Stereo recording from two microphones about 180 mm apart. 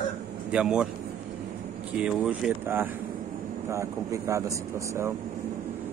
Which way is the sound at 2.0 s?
5° right (ahead or behind).